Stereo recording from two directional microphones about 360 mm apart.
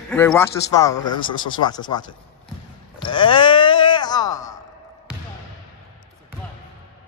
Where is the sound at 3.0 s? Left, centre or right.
Centre.